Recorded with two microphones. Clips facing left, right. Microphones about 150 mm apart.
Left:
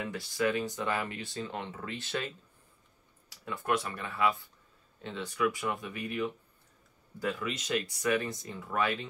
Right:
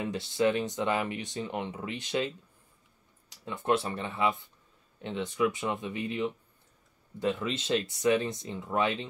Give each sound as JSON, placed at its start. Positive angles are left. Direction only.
{"t": 0.0, "sound": "speech", "side_deg": -25}